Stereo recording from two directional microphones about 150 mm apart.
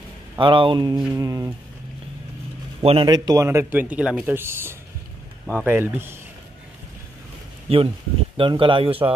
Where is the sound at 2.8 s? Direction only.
40° right (ahead or behind).